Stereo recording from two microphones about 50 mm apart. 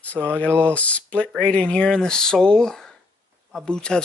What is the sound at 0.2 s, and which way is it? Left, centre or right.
Speech, right.